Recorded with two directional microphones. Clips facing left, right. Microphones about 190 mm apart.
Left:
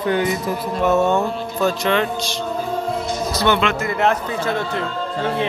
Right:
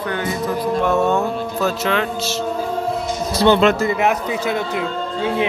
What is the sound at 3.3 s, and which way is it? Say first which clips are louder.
Speech: right 6 dB; 35° right (ahead or behind).